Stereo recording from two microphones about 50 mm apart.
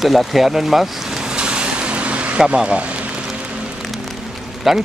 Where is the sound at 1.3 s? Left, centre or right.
Centre.